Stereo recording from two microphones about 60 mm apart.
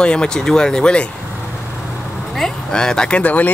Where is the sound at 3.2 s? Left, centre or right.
Left.